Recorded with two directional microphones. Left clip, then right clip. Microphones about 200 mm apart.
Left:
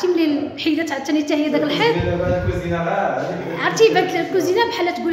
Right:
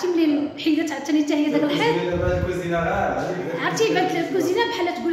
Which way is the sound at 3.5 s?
20° left (ahead or behind).